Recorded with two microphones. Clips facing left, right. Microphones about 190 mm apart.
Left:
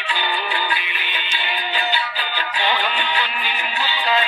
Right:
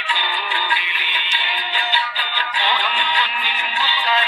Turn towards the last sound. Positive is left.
turn(degrees=15)  # may be behind; listen again after turning